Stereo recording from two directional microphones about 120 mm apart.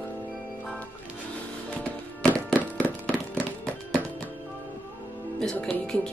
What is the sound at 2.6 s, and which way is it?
Thunk, 10° left (ahead or behind).